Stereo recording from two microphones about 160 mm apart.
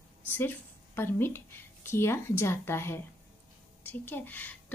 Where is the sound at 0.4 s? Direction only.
15° left (ahead or behind).